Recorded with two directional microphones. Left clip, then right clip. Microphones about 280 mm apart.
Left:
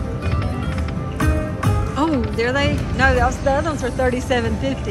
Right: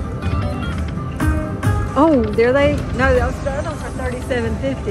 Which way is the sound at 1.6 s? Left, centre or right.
Centre.